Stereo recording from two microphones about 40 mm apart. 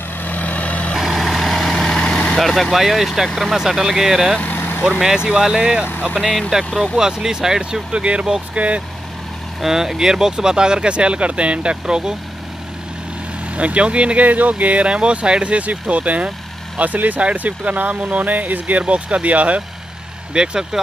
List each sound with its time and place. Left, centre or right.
0.2 s vehicle: left
0.9 s vehicle: centre
2.3 s speech: centre
2.7 s speech: centre
4.6 s vehicle: left
4.9 s speech: centre
6.1 s speech: centre
7.0 s speech: centre
7.9 s speech: right
9.6 s speech: centre
13.6 s speech: right
14.2 s speech: right
20.3 s speech: centre